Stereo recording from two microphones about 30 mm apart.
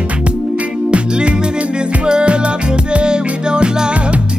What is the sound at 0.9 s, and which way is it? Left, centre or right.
Music, right.